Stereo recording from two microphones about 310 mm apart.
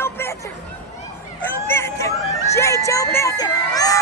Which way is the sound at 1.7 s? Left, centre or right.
Centre.